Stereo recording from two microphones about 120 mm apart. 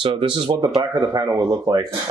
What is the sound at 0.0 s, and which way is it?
Speech, 45° right (ahead or behind).